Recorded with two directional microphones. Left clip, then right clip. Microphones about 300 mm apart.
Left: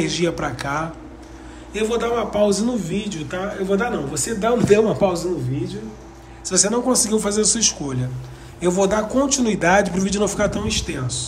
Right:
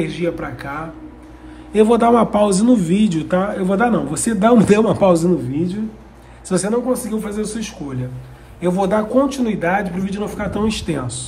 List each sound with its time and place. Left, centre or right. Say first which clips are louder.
0.0 s a man's voice: even; centre
1.7 s a man's voice: right 8 dB; centre
6.4 s a man's voice: right 1 dB; centre